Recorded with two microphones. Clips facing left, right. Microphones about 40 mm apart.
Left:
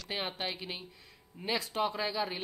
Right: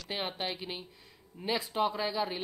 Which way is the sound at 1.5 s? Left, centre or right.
Centre.